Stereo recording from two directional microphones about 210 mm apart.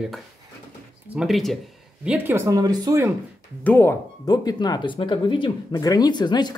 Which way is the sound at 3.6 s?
10° left (ahead or behind).